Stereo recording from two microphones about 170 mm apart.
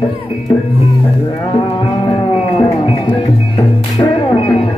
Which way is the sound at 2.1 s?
30° left (ahead or behind).